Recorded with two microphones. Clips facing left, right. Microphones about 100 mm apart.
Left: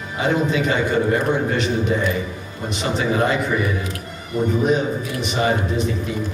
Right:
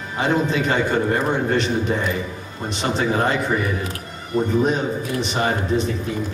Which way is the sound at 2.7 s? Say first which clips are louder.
Even; 35° right (ahead or behind).